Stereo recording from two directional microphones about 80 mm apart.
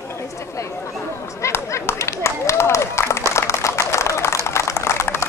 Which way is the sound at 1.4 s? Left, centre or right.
Left.